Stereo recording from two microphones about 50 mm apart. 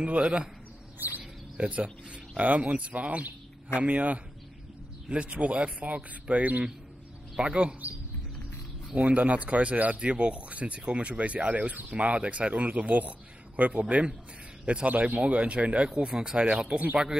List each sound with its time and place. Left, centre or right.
0.0 s speech: right
0.9 s a sound: right
1.6 s speech: right
9.0 s speech: right